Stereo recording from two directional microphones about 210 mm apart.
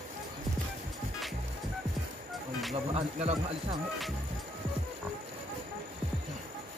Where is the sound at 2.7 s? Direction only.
30° right (ahead or behind).